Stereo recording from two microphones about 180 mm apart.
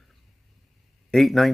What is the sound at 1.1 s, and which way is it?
Speech, centre (ahead or behind).